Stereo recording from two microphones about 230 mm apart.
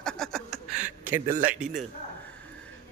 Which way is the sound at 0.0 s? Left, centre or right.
Centre.